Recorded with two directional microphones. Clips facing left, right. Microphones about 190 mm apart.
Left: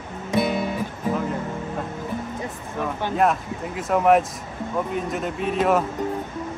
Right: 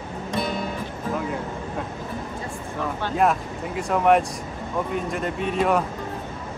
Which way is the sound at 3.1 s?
Centre (ahead or behind).